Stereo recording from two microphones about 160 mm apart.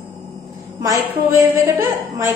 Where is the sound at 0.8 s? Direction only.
20° right (ahead or behind).